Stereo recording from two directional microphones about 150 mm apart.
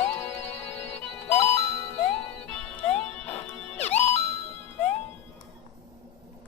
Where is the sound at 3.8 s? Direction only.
45° left (ahead or behind).